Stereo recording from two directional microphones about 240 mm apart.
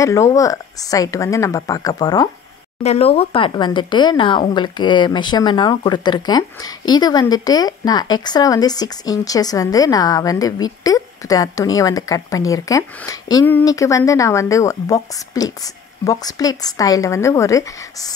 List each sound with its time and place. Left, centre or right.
0.0 s speech: centre